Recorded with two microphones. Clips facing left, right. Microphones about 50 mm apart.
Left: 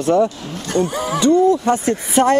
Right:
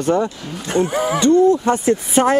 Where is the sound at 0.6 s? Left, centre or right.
Right.